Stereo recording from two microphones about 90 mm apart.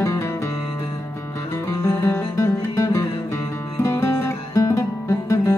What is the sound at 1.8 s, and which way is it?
Music, 30° left (ahead or behind).